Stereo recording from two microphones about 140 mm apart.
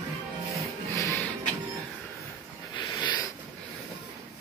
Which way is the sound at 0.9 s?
20° left (ahead or behind).